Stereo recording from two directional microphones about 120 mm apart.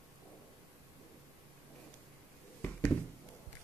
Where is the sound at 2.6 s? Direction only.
15° left (ahead or behind).